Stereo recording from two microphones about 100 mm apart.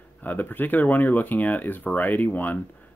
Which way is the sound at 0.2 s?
20° left (ahead or behind).